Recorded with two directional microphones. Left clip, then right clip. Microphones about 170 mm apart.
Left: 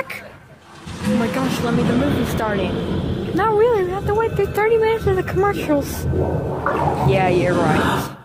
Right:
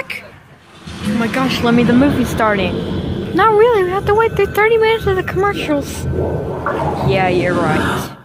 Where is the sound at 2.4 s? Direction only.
10° right (ahead or behind).